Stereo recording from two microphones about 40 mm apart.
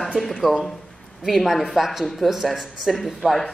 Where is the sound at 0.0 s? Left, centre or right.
Centre.